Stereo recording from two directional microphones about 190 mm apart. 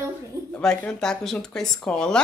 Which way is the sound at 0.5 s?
5° left (ahead or behind).